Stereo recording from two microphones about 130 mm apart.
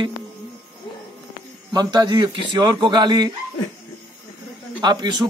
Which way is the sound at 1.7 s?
35° right (ahead or behind).